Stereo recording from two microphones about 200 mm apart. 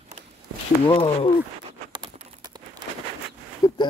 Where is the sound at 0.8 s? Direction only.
25° left (ahead or behind).